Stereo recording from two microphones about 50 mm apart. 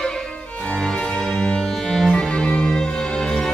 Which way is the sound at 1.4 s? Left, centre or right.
Centre.